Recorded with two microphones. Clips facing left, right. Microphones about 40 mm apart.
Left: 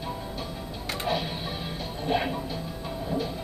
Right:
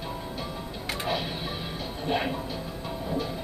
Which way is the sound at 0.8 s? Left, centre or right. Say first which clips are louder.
Left 1 dB; centre.